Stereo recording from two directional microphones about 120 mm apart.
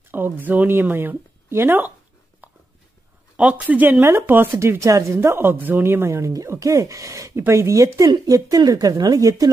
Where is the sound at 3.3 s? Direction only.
10° right (ahead or behind).